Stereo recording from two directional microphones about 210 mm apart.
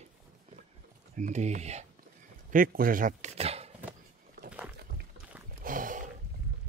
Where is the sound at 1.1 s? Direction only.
35° right (ahead or behind).